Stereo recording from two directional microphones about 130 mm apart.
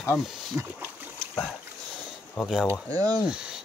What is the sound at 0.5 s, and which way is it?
Speech, 15° right (ahead or behind).